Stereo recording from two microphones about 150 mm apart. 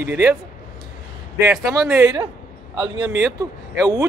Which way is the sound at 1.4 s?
15° right (ahead or behind).